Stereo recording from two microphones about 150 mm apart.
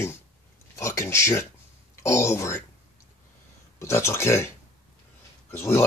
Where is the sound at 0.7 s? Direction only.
20° left (ahead or behind).